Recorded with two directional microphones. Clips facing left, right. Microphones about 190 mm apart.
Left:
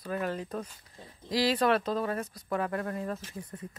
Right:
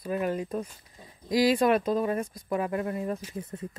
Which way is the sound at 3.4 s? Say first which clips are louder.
Right 5 dB; 25° right (ahead or behind).